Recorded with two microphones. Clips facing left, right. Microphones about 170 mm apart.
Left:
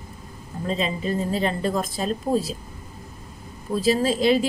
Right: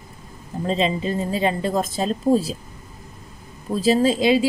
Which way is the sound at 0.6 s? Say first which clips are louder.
Right 4 dB; 25° right (ahead or behind).